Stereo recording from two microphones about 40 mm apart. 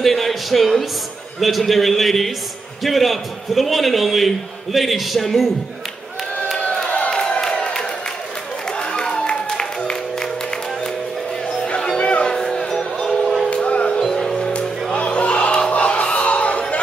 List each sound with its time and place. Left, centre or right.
0.0 s a man's voice: centre
7.1 s crowd: left
8.7 s a sound: left
9.5 s music: centre
11.6 s music: left
12.3 s music: centre
13.5 s music: left
14.0 s music: centre
14.6 s music: left